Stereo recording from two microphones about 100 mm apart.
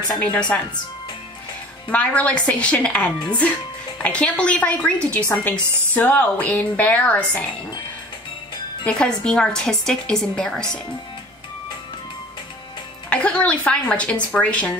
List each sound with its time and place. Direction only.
0.5 s a woman's voice: 15° left (ahead or behind)
1.9 s a woman's voice: 15° left (ahead or behind)
8.8 s a woman's voice: 10° left (ahead or behind)
13.1 s a woman's voice: 10° left (ahead or behind)